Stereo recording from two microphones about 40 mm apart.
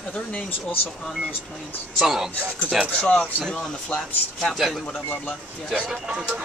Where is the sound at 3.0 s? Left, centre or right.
Left.